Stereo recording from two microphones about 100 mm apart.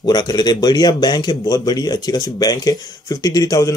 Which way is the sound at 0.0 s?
45° left (ahead or behind).